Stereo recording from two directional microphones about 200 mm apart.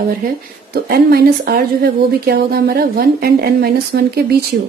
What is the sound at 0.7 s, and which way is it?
A woman's voice, 50° right (ahead or behind).